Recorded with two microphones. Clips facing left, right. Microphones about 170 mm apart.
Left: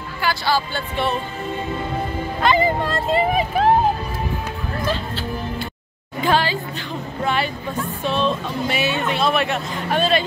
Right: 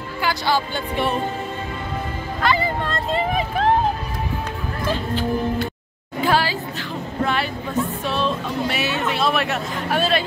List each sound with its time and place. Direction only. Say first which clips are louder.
0.2 s speech: even; 20° right (ahead or behind)
2.4 s speech: left 3 dB; 20° left (ahead or behind)
2.9 s speech: left 3 dB; 5° left (ahead or behind)
6.2 s a woman's voice: left 1 dB; 5° right (ahead or behind)